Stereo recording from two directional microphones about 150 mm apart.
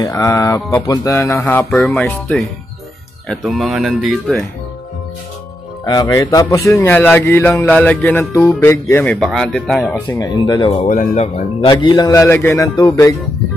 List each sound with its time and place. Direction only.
0.0 s mantra: 25° left (ahead or behind)
1.7 s speech: 5° left (ahead or behind)
5.9 s speech: 25° left (ahead or behind); by 9.9 s centre (ahead or behind)
10.0 s mantra: 20° left (ahead or behind)
10.7 s speech: 45° left (ahead or behind)
11.6 s mantra: 30° left (ahead or behind); by 12.6 s 15° left (ahead or behind)